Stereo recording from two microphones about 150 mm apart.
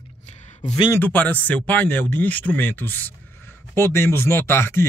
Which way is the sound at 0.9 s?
10° left (ahead or behind).